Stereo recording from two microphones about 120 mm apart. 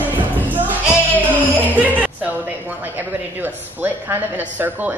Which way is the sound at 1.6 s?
15° right (ahead or behind).